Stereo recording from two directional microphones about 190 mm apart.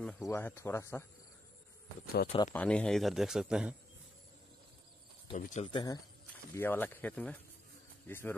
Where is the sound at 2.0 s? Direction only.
55° left (ahead or behind).